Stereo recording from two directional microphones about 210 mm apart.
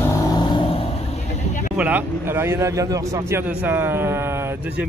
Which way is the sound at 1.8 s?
10° right (ahead or behind).